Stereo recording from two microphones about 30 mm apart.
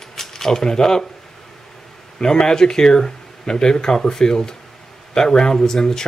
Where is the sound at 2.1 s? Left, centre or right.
Left.